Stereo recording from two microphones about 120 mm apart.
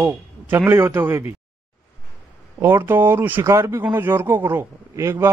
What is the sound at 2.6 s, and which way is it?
Speech, 20° right (ahead or behind).